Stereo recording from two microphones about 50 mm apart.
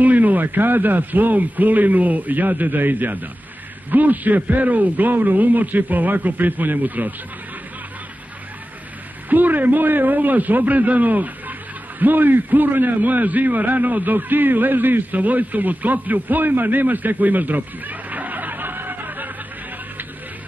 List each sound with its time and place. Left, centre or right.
0.0 s a man's voice: right
9.3 s a man's voice: right